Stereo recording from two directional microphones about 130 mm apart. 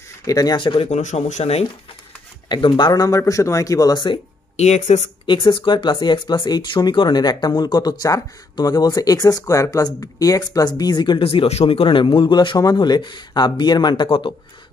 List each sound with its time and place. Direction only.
0.2 s speech: 25° left (ahead or behind)
0.6 s speech: 40° left (ahead or behind)
0.8 s speech: 60° left (ahead or behind)
2.5 s speech: 35° left (ahead or behind)
4.6 s speech: 60° left (ahead or behind)
5.2 s speech: 40° left (ahead or behind)